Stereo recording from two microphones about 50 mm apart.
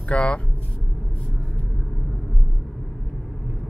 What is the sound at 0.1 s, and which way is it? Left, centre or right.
Speech, left.